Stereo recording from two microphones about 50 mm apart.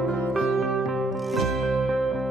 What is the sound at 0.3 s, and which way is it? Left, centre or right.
Music, centre.